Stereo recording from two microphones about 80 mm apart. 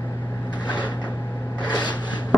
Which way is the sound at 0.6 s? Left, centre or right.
Left.